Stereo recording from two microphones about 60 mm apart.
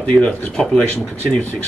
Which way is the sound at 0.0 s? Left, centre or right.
Centre.